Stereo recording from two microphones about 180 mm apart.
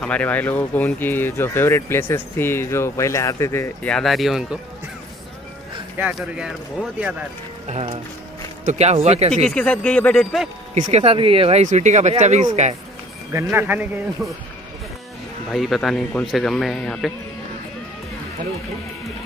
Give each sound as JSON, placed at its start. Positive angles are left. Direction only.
{"t": 0.0, "sound": "speech", "side_deg": 10}
{"t": 5.9, "sound": "speech", "side_deg": -5}
{"t": 7.6, "sound": "speech", "side_deg": -35}
{"t": 9.3, "sound": "speech", "side_deg": 5}
{"t": 10.7, "sound": "speech", "side_deg": -35}
{"t": 13.3, "sound": "speech", "side_deg": -15}
{"t": 15.5, "sound": "speech", "side_deg": 0}